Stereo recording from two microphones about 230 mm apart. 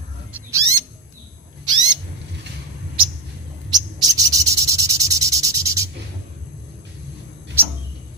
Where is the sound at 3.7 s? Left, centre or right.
Centre.